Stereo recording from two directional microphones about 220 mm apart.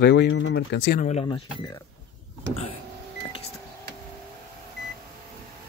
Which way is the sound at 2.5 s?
25° left (ahead or behind).